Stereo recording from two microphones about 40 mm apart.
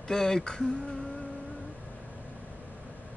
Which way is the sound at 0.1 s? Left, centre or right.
Centre.